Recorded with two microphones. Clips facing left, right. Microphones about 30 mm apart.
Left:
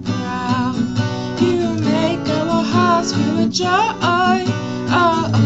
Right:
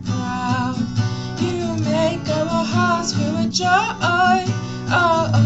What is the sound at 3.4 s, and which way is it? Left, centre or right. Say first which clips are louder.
Music: even; centre.